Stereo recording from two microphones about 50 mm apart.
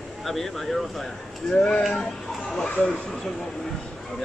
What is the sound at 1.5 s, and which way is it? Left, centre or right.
Speech, centre.